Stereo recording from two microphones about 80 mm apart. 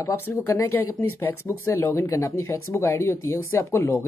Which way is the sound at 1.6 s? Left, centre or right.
Left.